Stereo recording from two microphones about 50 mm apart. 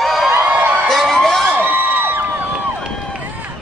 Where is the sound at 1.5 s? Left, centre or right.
Right.